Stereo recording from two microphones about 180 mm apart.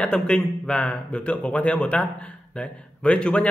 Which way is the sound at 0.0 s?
5° left (ahead or behind).